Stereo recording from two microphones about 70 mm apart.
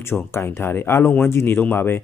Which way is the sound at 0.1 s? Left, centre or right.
Left.